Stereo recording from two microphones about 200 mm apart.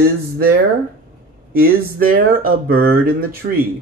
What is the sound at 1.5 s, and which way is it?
Speech, 45° right (ahead or behind).